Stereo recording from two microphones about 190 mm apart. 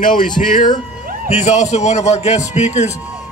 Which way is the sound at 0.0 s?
45° left (ahead or behind).